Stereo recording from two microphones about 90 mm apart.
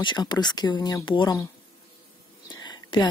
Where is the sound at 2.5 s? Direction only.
55° left (ahead or behind).